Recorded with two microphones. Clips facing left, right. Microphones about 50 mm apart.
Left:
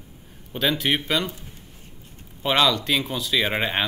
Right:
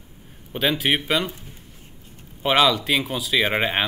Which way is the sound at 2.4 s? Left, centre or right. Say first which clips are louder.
Right 2 dB; centre.